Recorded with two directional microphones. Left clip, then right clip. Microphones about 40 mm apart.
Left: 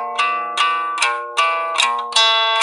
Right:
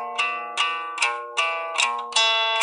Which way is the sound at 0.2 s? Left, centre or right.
Left.